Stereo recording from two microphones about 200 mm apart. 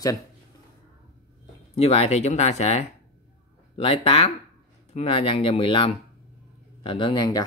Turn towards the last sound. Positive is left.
turn(degrees=20)  # may be behind; listen again after turning